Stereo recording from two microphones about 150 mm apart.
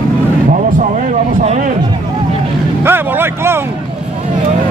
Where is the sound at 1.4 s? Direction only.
55° right (ahead or behind).